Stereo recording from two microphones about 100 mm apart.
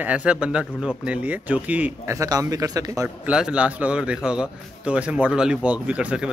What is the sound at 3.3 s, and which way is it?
A man's voice, 10° right (ahead or behind).